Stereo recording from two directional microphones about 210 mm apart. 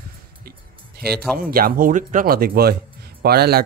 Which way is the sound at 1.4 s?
45° right (ahead or behind).